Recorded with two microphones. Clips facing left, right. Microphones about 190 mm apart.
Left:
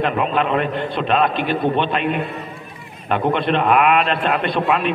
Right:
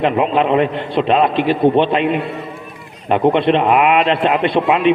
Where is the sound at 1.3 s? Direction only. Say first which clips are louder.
Right 5 dB; 90° right.